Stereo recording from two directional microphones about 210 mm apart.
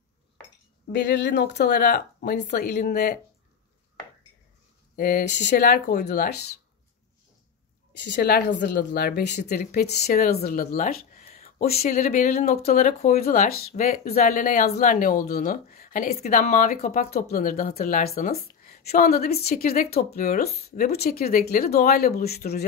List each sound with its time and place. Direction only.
0.9 s speech: 55° left (ahead or behind); by 3.2 s 40° left (ahead or behind)
4.9 s speech: 45° left (ahead or behind)
8.0 s speech: 55° left (ahead or behind)